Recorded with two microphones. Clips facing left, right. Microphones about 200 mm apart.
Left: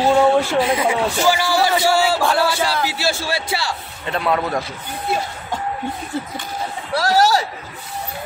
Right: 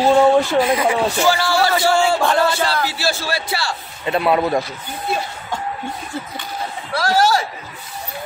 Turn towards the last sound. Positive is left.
turn(degrees=40)  # may be behind; listen again after turning